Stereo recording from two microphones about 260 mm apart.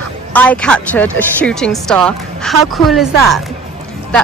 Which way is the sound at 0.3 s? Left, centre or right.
Centre.